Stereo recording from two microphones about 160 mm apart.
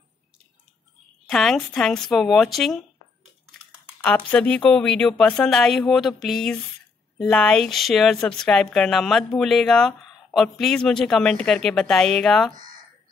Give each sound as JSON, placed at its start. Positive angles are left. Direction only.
{"t": 1.3, "sound": "speech", "side_deg": 0}
{"t": 4.0, "sound": "speech", "side_deg": 5}